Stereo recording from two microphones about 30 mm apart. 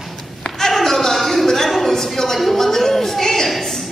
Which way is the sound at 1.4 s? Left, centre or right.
Centre.